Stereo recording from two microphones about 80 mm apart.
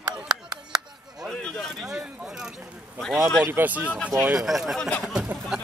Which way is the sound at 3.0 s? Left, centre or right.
Centre.